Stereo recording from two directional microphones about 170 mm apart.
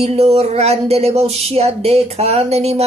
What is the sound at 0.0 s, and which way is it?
Speech, 35° right (ahead or behind).